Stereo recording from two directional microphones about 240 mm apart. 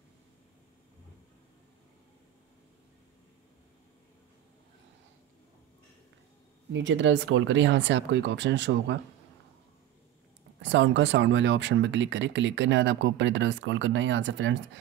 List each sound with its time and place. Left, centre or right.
6.7 s speech: right
10.6 s speech: right